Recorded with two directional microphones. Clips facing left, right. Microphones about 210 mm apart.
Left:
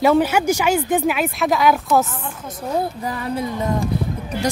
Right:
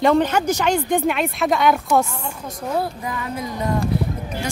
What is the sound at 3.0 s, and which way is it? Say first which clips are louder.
Speech: left 2 dB; 35° left (ahead or behind).